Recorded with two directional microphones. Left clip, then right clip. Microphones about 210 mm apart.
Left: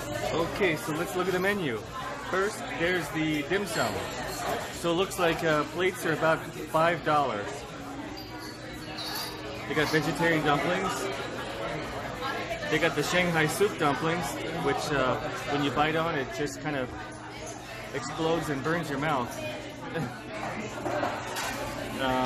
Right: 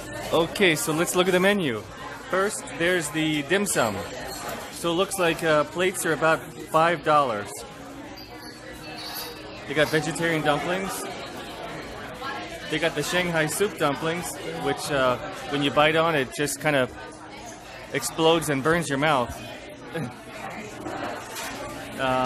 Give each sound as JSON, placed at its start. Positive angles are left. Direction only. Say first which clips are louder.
{"t": 0.6, "sound": "a man's voice", "louder": "right 6 dB", "side_deg": -40}
{"t": 4.8, "sound": "a man's voice", "louder": "right 3 dB", "side_deg": -20}
{"t": 9.8, "sound": "a man's voice", "louder": "right 4 dB", "side_deg": -25}
{"t": 12.7, "sound": "a man's voice", "louder": "right 2 dB", "side_deg": -20}
{"t": 17.9, "sound": "a man's voice", "louder": "right 8 dB", "side_deg": -40}